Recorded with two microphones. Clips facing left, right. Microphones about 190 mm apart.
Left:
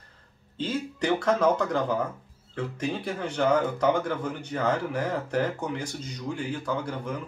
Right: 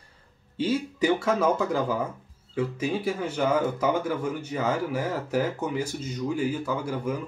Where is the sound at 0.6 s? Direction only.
5° right (ahead or behind).